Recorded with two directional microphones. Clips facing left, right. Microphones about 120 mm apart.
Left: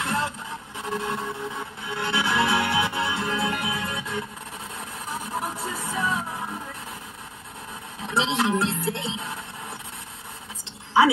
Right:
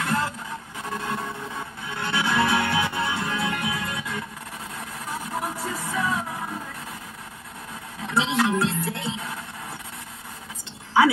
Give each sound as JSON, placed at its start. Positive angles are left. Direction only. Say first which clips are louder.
{"t": 0.0, "sound": "music", "louder": "right 1 dB", "side_deg": 25}
{"t": 0.8, "sound": "a sound", "louder": "left 2 dB", "side_deg": 25}
{"t": 1.9, "sound": "music", "louder": "even", "side_deg": 25}
{"t": 5.6, "sound": "music", "louder": "right 1 dB", "side_deg": 25}
{"t": 8.1, "sound": "music", "louder": "right 1 dB", "side_deg": 25}